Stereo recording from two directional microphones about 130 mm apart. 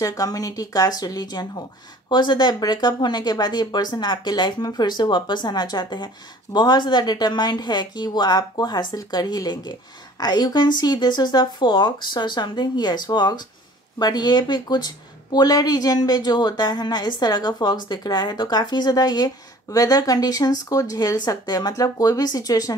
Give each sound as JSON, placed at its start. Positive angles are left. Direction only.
{"t": 0.0, "sound": "speech", "side_deg": 25}